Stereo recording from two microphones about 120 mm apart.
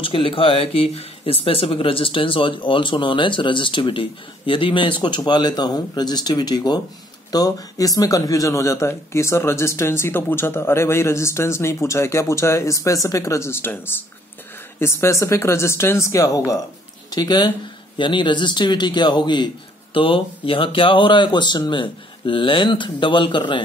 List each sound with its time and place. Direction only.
0.0 s a man's voice: 45° left (ahead or behind)